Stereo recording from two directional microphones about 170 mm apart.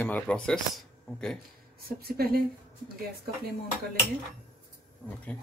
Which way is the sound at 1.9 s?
65° right (ahead or behind).